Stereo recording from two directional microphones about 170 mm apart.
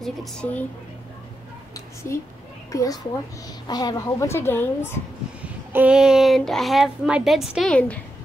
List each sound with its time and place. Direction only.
0.0 s a child's voice: 5° left (ahead or behind)
2.1 s speech: 15° left (ahead or behind)
5.4 s a child's voice: 10° right (ahead or behind)